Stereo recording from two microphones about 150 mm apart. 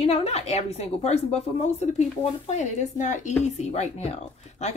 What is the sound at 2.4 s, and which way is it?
A woman's voice, 50° left (ahead or behind).